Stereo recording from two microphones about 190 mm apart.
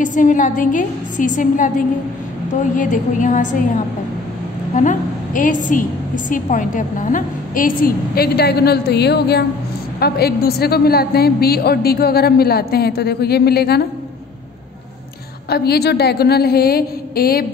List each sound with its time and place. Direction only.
0.0 s a woman's voice: 45° left (ahead or behind)
2.7 s a woman's voice: 45° left (ahead or behind)
15.5 s a woman's voice: 60° left (ahead or behind)